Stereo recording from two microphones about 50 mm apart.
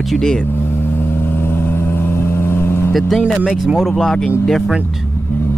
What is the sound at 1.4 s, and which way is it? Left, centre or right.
Vehicle, left.